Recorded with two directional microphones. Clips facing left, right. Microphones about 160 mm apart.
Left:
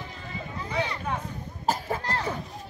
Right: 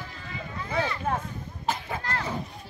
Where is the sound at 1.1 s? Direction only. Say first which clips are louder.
Right 3 dB; 50° right (ahead or behind).